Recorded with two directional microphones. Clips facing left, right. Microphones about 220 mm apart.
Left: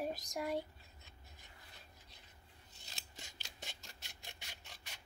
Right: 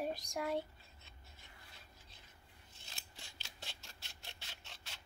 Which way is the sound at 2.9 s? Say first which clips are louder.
Left 2 dB; 20° left (ahead or behind).